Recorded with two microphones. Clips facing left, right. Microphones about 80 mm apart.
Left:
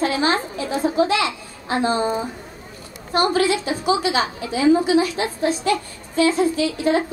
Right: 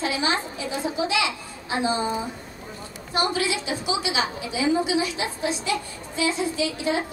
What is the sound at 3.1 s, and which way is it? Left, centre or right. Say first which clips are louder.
A woman's voice: left 6 dB; left.